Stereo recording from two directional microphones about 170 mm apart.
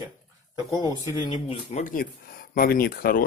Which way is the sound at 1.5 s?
45° left (ahead or behind).